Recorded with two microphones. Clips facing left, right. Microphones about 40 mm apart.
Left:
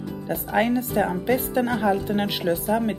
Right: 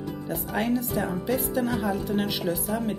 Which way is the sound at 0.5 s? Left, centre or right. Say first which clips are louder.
Left 5 dB; left.